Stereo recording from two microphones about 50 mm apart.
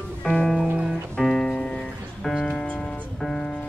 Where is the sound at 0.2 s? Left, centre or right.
Centre.